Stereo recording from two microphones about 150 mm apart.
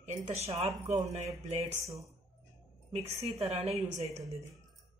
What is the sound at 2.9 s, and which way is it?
A woman's voice, 45° right (ahead or behind).